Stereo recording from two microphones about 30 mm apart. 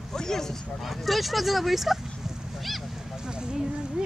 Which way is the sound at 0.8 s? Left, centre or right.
Centre.